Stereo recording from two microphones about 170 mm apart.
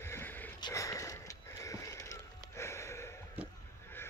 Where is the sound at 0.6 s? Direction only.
20° left (ahead or behind).